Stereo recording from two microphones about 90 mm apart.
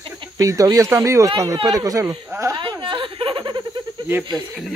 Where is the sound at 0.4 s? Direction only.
40° right (ahead or behind).